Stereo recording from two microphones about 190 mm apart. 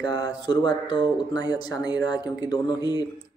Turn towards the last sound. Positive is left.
turn(degrees=20)  # may be behind; listen again after turning